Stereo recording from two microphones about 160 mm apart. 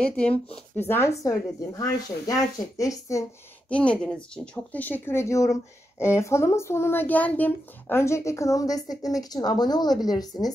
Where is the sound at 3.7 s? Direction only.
5° left (ahead or behind).